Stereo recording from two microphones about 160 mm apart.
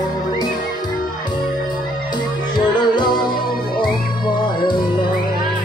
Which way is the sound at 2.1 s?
30° left (ahead or behind).